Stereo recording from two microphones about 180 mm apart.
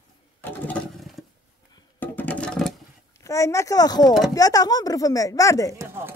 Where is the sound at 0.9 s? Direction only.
Centre (ahead or behind).